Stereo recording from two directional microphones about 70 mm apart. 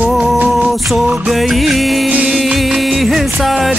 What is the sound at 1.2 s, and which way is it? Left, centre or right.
Music, centre.